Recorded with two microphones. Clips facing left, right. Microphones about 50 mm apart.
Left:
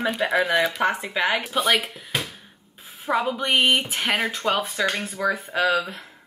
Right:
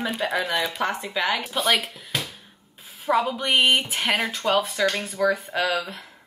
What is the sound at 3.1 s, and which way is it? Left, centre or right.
Speech, centre.